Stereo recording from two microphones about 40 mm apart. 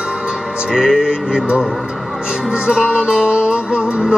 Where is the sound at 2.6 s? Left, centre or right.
Right.